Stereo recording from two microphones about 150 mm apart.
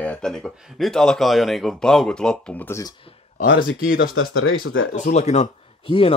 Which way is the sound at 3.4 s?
70° left (ahead or behind).